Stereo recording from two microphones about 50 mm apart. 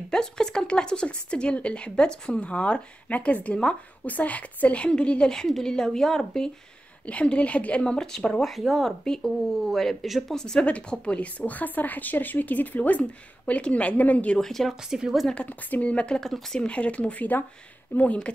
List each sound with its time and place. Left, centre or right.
0.1 s a woman's voice: centre
4.0 s a woman's voice: left
5.3 s a woman's voice: centre
7.1 s a woman's voice: left
7.8 s speech: centre
9.0 s a woman's voice: centre
10.3 s a woman's voice: centre; by 13.0 s left
13.5 s a woman's voice: left
14.4 s speech: centre
14.8 s a woman's voice: centre
15.3 s a woman's voice: left
16.2 s a woman's voice: centre
16.6 s a woman's voice: left